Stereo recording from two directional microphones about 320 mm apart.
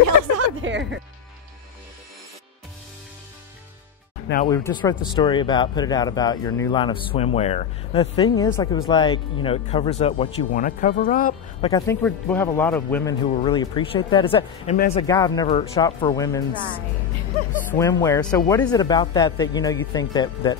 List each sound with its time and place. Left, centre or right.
0.4 s a sound: right
4.5 s speech: centre
11.7 s speech: centre
17.7 s speech: centre